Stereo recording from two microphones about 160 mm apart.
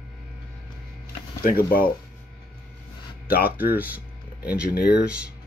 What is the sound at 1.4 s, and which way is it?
Speech, 65° left (ahead or behind).